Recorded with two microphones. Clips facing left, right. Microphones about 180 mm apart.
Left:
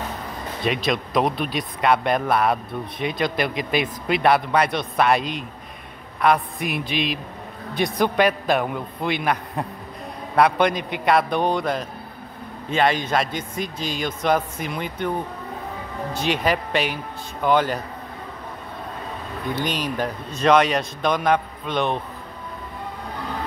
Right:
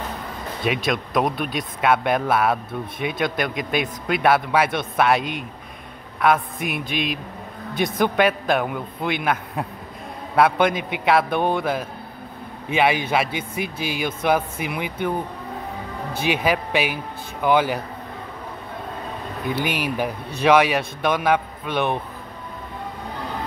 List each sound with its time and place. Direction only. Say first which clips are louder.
0.8 s speech: left 1 dB; centre (ahead or behind)
6.2 s speech: even; centre (ahead or behind)
6.7 s speech: left 1 dB; 50° right (ahead or behind)
7.7 s a man's voice: even; centre (ahead or behind)
16.3 s a man's voice: right 1 dB; 5° right (ahead or behind)
19.5 s a man's voice: right 1 dB; 10° right (ahead or behind)